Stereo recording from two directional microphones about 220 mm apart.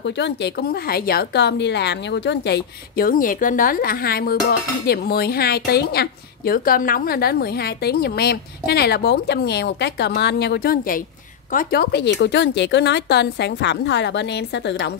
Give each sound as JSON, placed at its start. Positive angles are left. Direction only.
{"t": 0.0, "sound": "speech", "side_deg": 50}